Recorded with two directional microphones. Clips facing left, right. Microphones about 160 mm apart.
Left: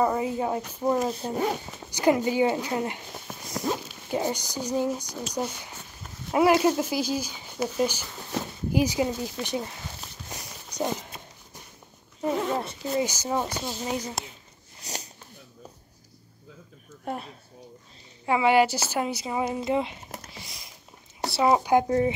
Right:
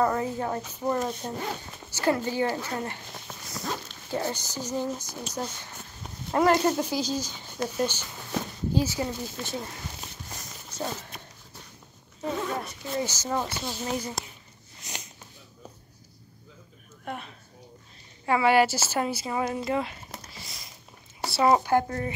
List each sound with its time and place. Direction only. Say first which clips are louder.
0.0 s speech: left 1 dB; 10° left (ahead or behind)
10.3 s walk: left 3 dB; 15° left (ahead or behind)
12.4 s zipper: left 4 dB; 25° left (ahead or behind)
12.9 s speech: left 2 dB; 10° left (ahead or behind)
17.0 s a sound: left 3 dB; 35° left (ahead or behind)
18.2 s speech: left 1 dB; 15° left (ahead or behind)